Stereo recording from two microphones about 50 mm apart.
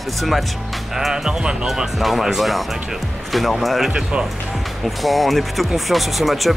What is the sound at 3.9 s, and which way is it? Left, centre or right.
Speech, right.